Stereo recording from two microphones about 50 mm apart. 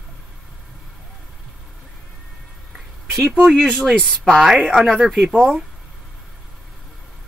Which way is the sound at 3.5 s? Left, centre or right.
Centre.